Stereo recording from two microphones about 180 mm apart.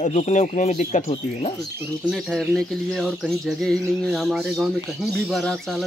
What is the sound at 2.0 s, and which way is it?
Speech, centre (ahead or behind).